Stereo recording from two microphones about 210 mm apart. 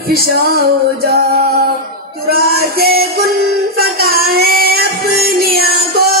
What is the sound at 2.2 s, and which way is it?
Music, 45° right (ahead or behind).